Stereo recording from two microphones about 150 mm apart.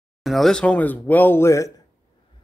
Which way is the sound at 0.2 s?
Centre (ahead or behind).